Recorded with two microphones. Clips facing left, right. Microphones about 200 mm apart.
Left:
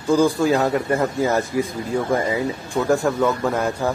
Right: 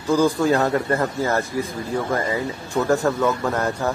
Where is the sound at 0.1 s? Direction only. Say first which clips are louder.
Left 1 dB; 10° left (ahead or behind).